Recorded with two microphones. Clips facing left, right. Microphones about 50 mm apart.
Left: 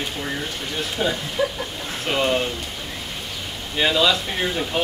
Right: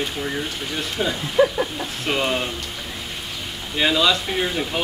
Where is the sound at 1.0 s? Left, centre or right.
Centre.